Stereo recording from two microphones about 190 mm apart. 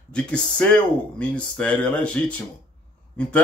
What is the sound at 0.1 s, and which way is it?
Speech, 5° left (ahead or behind).